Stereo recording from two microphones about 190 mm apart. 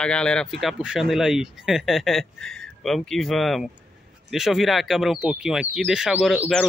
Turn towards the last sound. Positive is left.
turn(degrees=0)  # may be behind; listen again after turning